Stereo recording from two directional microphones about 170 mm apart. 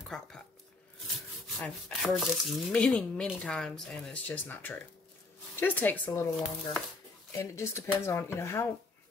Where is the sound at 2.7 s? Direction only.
5° left (ahead or behind).